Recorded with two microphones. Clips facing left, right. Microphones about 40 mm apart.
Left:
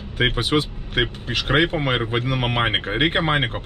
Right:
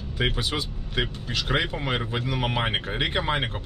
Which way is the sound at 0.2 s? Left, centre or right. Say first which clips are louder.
Left 7 dB; left.